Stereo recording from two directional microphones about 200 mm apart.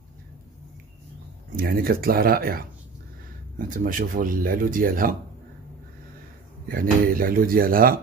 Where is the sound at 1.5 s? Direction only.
45° right (ahead or behind).